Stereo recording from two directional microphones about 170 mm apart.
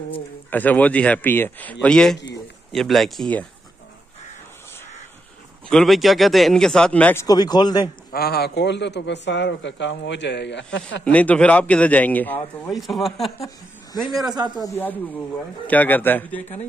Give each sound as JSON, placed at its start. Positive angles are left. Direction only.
{"t": 0.5, "sound": "speech", "side_deg": 10}
{"t": 5.7, "sound": "speech", "side_deg": 0}
{"t": 7.2, "sound": "speech", "side_deg": 25}
{"t": 8.1, "sound": "a man's voice", "side_deg": 65}
{"t": 11.1, "sound": "speech", "side_deg": 10}
{"t": 14.2, "sound": "a man's voice", "side_deg": -25}
{"t": 15.6, "sound": "speech", "side_deg": 10}